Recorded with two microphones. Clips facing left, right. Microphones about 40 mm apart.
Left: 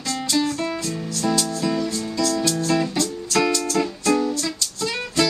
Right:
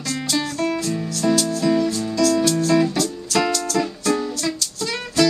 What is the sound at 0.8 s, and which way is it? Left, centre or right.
Music, centre.